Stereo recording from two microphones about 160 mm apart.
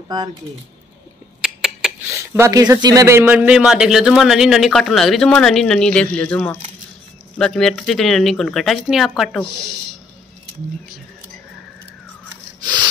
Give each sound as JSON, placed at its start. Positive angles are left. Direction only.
{"t": 1.4, "sound": "rodents", "side_deg": -5}
{"t": 2.0, "sound": "speech", "side_deg": -15}